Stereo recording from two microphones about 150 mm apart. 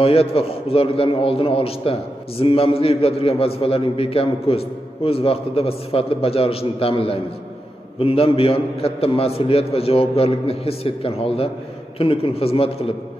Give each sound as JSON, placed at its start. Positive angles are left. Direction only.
{"t": 0.0, "sound": "a man's voice", "side_deg": 40}